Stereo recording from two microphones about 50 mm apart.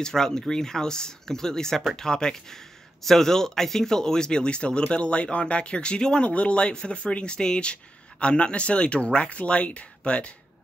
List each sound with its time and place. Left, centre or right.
0.0 s speech: centre